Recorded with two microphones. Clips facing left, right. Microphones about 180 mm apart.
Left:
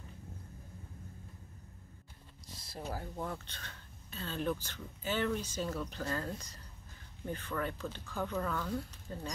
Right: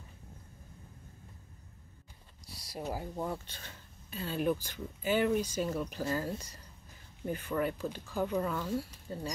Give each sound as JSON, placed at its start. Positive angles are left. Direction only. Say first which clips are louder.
{"t": 2.6, "sound": "speech", "louder": "right 4 dB", "side_deg": -15}